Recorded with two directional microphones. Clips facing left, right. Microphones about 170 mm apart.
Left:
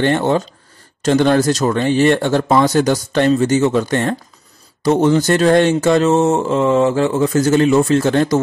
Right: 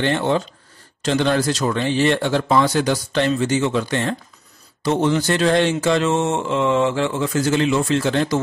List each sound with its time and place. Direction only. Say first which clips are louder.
0.0 s speech: left 4 dB; 45° left (ahead or behind)